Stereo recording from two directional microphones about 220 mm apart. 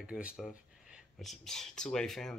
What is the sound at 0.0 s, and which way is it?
Speech, 5° right (ahead or behind).